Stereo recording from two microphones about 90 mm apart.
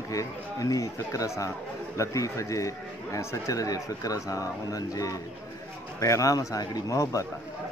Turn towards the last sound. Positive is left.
turn(degrees=35)  # may be behind; listen again after turning